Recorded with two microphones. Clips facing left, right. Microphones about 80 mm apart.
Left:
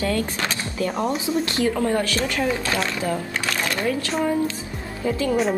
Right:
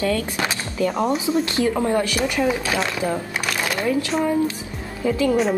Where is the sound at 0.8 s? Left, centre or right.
Centre.